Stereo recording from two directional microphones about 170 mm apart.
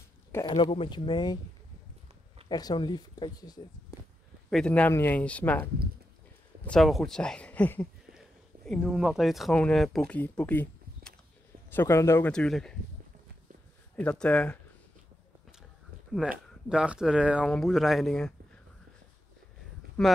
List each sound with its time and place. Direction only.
0.3 s speech: 20° left (ahead or behind)
2.4 s speech: 25° left (ahead or behind)
4.5 s speech: 5° left (ahead or behind)
12.3 s speech: 5° left (ahead or behind)
13.9 s speech: 5° left (ahead or behind)
16.1 s speech: 5° right (ahead or behind)
20.0 s speech: 5° left (ahead or behind)